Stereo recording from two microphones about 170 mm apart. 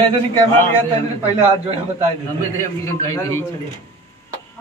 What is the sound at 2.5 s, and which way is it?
Speech, 15° left (ahead or behind).